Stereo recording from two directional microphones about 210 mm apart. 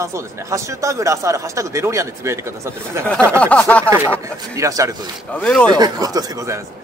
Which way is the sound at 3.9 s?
10° right (ahead or behind).